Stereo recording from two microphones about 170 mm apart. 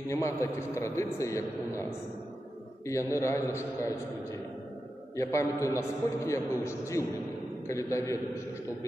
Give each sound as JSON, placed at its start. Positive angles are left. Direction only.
{"t": 0.1, "sound": "a man's voice", "side_deg": 15}
{"t": 2.9, "sound": "a man's voice", "side_deg": 15}
{"t": 5.1, "sound": "a man's voice", "side_deg": 15}